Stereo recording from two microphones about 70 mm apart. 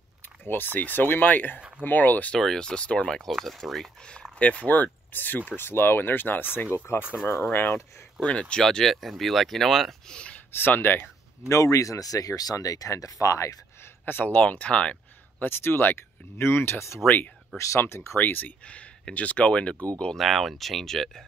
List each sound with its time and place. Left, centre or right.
0.7 s speech: left
2.3 s speech: centre
3.3 s speech: centre
4.4 s speech: centre
8.2 s speech: centre
10.0 s a sound: centre
10.5 s speech: left
11.4 s speech: left
14.0 s speech: left
15.4 s speech: left
18.7 s speech: centre
20.2 s speech: centre